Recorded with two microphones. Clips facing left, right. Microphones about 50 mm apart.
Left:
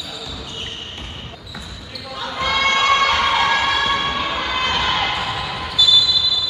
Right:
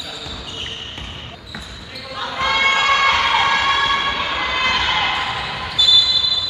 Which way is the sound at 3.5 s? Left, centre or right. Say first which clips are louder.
Right 1 dB; centre.